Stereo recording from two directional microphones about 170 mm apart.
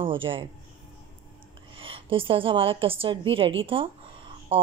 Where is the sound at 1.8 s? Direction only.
30° right (ahead or behind).